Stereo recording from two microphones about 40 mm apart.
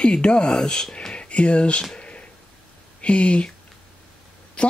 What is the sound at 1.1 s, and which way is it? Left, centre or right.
Speech, left.